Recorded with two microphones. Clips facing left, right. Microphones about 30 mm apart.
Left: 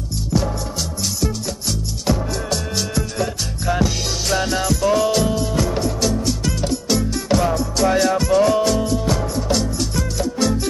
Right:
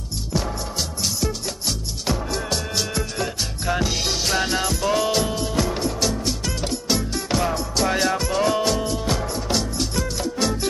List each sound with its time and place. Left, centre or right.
0.3 s music: centre
2.0 s music: centre
5.9 s music: centre
8.8 s music: right